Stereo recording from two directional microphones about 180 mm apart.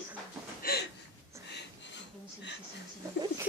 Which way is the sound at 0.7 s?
55° left (ahead or behind).